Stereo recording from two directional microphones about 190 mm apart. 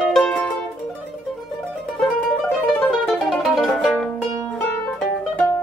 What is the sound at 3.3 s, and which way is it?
Music, centre (ahead or behind).